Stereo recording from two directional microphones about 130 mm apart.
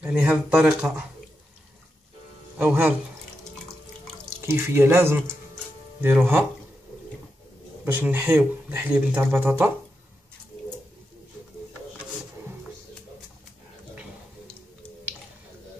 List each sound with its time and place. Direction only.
0.0 s speech: 10° right (ahead or behind)
2.6 s speech: 15° right (ahead or behind)
4.5 s speech: 20° right (ahead or behind)
7.8 s speech: 15° right (ahead or behind)